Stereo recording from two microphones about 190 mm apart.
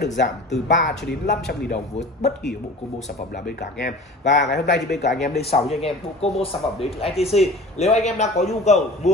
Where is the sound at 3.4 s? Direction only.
55° left (ahead or behind).